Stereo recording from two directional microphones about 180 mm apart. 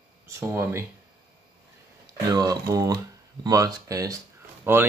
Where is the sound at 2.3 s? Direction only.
20° right (ahead or behind).